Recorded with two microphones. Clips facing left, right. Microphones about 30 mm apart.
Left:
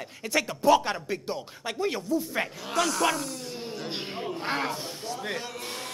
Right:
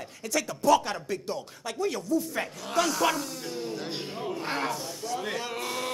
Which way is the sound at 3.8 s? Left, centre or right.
Centre.